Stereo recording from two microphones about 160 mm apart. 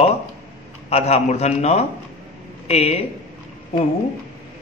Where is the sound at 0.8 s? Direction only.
40° left (ahead or behind).